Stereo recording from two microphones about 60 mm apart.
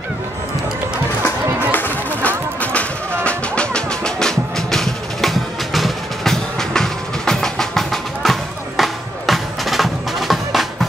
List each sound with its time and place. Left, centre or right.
1.7 s music: left; by 10.9 s centre